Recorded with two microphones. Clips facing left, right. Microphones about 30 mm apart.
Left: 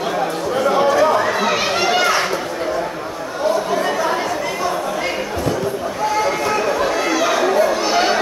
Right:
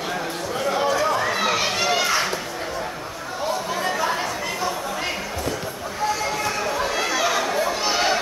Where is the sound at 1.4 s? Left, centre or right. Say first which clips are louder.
Left 4 dB; centre.